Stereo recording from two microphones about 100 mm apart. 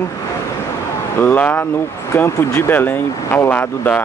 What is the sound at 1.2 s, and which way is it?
Speech, 15° left (ahead or behind).